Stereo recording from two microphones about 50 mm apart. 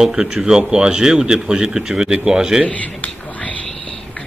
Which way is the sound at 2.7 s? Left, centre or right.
Left.